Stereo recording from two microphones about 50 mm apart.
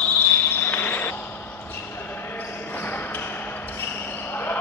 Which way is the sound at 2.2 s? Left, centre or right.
Left.